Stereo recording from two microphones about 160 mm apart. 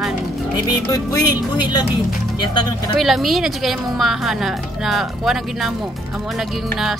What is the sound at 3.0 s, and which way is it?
A woman's voice, centre (ahead or behind).